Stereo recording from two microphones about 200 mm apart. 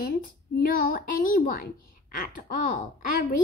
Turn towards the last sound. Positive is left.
turn(degrees=45)  # may be behind; listen again after turning